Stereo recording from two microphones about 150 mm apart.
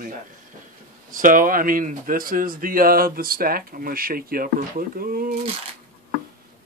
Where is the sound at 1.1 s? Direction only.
65° right (ahead or behind).